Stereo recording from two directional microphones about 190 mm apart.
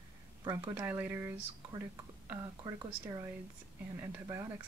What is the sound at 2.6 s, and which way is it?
Speech, 20° right (ahead or behind).